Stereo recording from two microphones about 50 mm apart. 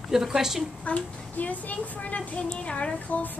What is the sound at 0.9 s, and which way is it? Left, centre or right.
A woman's voice, left.